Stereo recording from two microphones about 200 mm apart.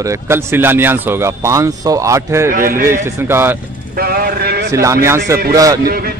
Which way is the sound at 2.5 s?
45° right (ahead or behind).